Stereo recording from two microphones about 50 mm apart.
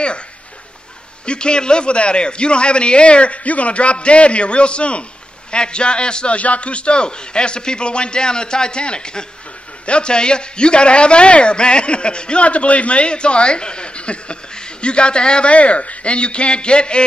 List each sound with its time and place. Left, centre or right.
1.2 s a man's voice: centre